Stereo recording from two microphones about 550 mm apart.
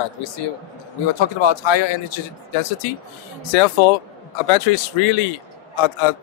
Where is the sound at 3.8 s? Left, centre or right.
Left.